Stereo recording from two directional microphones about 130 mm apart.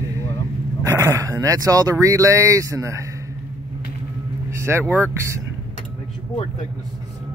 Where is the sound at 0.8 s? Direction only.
20° right (ahead or behind).